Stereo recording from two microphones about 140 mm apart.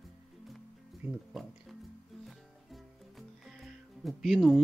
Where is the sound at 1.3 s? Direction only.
Centre (ahead or behind).